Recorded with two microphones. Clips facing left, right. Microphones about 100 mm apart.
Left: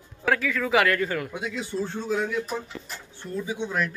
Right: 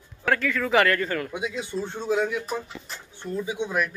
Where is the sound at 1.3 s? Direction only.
20° right (ahead or behind).